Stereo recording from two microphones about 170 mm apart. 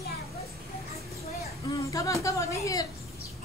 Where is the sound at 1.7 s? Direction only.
20° left (ahead or behind).